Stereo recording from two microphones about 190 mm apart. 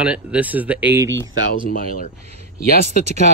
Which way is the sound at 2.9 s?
35° right (ahead or behind).